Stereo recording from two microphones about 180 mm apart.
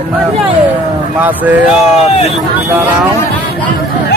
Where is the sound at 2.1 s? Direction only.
35° left (ahead or behind).